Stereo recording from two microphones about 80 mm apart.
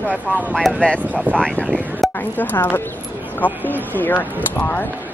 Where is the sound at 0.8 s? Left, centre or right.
Centre.